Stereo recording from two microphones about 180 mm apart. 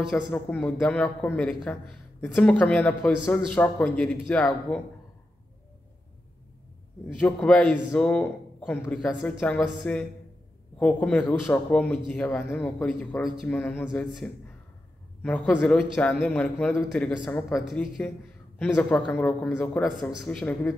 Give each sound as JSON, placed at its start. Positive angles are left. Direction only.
{"t": 0.3, "sound": "a man's voice", "side_deg": 10}
{"t": 7.2, "sound": "a man's voice", "side_deg": 5}